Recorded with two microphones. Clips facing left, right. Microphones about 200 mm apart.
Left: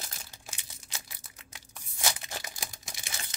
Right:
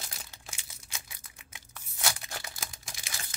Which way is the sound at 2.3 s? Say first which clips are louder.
Left 1 dB; 15° left (ahead or behind).